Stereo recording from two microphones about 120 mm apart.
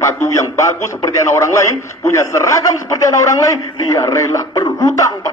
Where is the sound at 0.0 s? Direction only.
25° left (ahead or behind).